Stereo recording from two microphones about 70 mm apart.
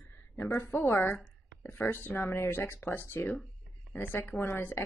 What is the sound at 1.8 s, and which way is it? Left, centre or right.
A woman's voice, left.